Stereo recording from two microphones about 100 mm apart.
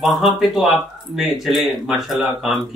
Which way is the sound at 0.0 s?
Centre (ahead or behind).